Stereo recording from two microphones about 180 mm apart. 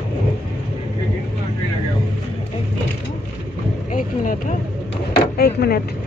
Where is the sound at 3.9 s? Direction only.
50° left (ahead or behind).